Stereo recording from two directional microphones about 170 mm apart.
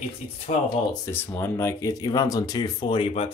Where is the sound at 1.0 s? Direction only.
10° left (ahead or behind).